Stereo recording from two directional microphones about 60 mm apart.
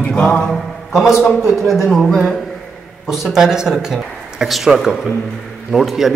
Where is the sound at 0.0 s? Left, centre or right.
Left.